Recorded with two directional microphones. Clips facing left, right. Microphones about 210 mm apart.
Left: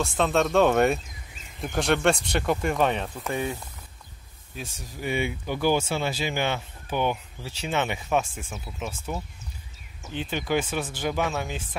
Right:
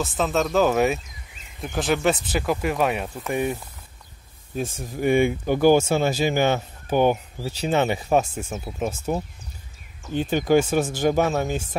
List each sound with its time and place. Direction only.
0.0 s speech: centre (ahead or behind)
4.6 s speech: 50° right (ahead or behind)